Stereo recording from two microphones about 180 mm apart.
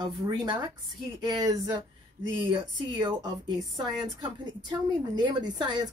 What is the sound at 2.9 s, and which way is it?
A woman's voice, 25° right (ahead or behind).